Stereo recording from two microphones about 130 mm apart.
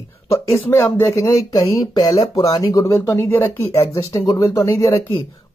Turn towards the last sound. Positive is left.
turn(degrees=25)  # may be behind; listen again after turning